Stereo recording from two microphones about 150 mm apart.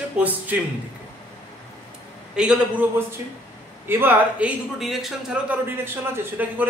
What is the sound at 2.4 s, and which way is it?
A man's voice, 10° right (ahead or behind).